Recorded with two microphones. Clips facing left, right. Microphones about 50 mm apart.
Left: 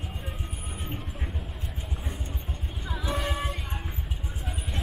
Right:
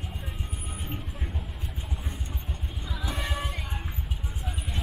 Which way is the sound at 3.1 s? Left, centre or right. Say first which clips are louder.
Left 3 dB; centre.